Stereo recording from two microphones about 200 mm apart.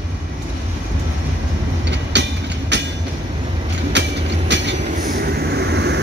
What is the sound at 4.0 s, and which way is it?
Train, 60° right (ahead or behind).